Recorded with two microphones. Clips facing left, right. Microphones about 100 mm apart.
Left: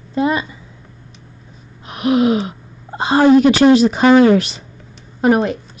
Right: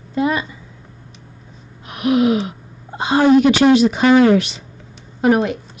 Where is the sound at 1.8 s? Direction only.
30° left (ahead or behind).